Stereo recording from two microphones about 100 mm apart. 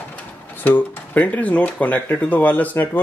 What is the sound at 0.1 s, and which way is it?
Speech, 15° left (ahead or behind).